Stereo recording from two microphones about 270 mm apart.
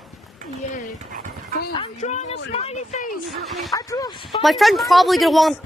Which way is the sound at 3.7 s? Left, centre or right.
Centre.